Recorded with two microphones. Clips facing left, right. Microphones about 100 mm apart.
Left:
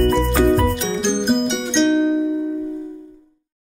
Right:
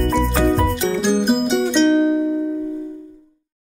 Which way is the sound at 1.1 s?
5° right (ahead or behind).